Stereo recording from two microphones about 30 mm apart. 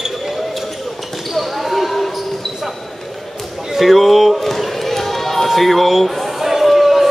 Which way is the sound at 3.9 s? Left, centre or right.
Centre.